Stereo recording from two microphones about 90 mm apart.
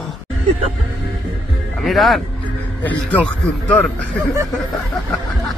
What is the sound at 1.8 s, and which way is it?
Speech, centre (ahead or behind).